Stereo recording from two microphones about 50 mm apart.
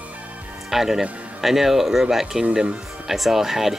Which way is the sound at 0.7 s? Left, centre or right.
Centre.